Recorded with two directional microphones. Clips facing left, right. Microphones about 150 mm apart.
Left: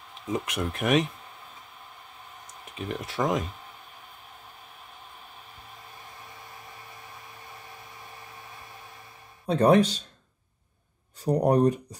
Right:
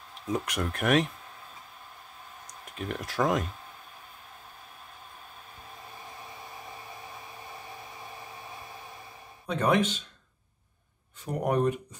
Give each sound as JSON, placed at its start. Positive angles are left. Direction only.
{"t": 0.3, "sound": "speech", "side_deg": 0}
{"t": 2.4, "sound": "speech", "side_deg": 0}
{"t": 9.5, "sound": "speech", "side_deg": 35}
{"t": 11.2, "sound": "speech", "side_deg": 35}